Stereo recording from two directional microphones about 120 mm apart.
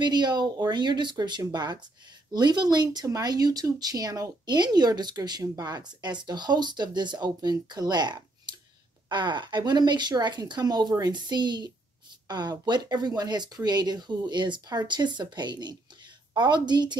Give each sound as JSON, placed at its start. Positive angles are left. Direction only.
{"t": 0.0, "sound": "speech", "side_deg": -35}